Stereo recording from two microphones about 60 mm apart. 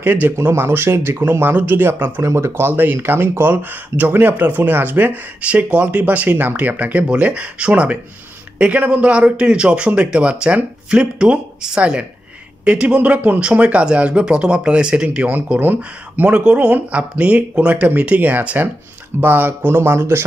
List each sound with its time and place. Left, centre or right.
0.0 s speech: right
2.2 s speech: right